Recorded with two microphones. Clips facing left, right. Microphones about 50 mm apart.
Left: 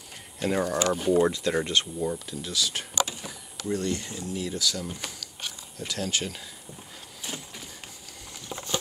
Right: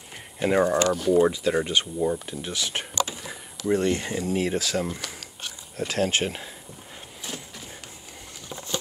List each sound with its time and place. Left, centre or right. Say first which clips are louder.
0.4 s speech: right 5 dB; right
0.8 s speech: right 2 dB; centre
1.1 s speech: right 3 dB; centre
2.1 s speech: even; right
4.0 s speech: right 7 dB; right
4.6 s speech: right 4 dB; right